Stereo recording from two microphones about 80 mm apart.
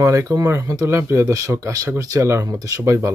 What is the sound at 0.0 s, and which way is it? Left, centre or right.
Speech, right.